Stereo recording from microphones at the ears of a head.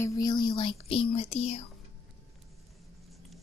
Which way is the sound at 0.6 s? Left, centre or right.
Left.